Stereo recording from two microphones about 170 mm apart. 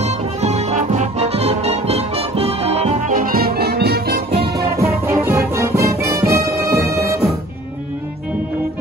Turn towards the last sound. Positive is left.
turn(degrees=-15)  # may be behind; listen again after turning